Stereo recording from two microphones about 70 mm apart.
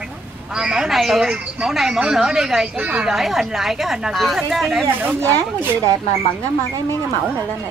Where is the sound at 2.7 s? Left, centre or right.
Right.